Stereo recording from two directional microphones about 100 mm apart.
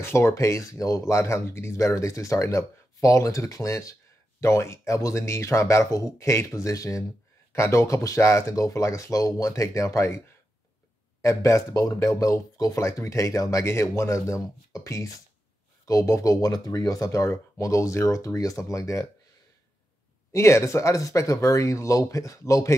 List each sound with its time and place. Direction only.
0.0 s speech: 25° left (ahead or behind)
11.2 s speech: 30° left (ahead or behind)
20.3 s speech: 30° left (ahead or behind)